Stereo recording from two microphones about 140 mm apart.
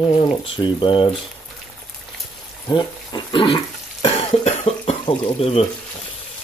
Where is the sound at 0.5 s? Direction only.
35° left (ahead or behind).